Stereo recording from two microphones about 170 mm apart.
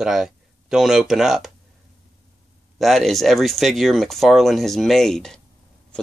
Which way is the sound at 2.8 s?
Centre (ahead or behind).